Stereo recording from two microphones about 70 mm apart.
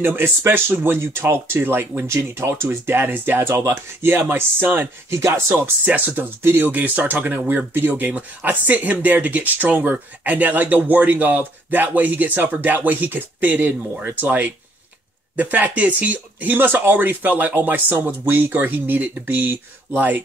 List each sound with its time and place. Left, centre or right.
0.0 s speech: right
5.1 s speech: right
5.9 s speech: right